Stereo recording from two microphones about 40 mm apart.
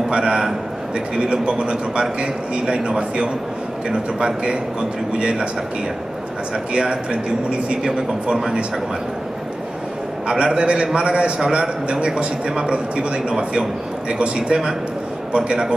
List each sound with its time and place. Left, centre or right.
0.1 s a man's voice: right
6.7 s a man's voice: right
10.2 s a man's voice: right
12.7 s a man's voice: right